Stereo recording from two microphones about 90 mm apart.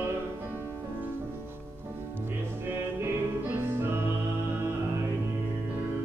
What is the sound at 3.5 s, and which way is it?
Music, 25° right (ahead or behind).